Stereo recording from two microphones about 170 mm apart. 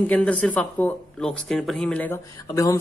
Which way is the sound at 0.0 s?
10° left (ahead or behind).